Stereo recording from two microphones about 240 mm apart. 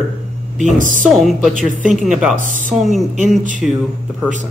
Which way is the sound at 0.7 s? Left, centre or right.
Right.